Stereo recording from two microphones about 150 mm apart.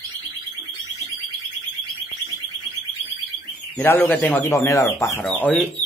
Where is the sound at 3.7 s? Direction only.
15° left (ahead or behind).